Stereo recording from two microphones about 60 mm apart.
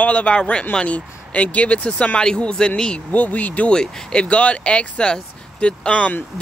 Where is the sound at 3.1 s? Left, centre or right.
Left.